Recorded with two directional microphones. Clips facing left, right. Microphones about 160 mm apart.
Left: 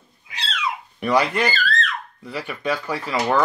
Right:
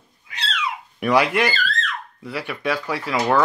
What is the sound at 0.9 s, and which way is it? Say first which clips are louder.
Speech: right 2 dB; 5° right (ahead or behind).